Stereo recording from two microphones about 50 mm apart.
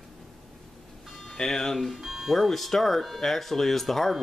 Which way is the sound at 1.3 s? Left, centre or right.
Centre.